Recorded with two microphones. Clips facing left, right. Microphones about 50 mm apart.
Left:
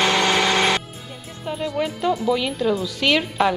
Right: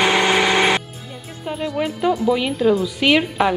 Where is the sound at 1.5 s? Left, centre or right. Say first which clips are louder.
Right 1 dB; centre.